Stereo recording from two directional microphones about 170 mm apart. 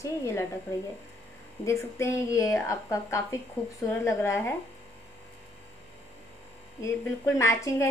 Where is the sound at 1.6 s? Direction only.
15° left (ahead or behind).